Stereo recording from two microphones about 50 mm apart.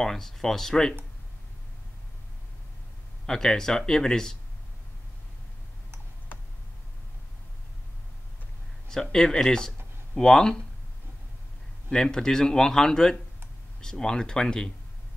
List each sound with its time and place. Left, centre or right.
0.0 s speech: centre
3.3 s speech: centre
8.8 s speech: centre
11.9 s speech: centre